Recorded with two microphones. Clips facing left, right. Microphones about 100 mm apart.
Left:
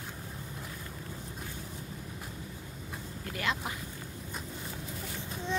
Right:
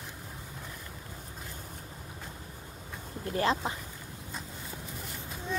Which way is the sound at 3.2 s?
30° right (ahead or behind).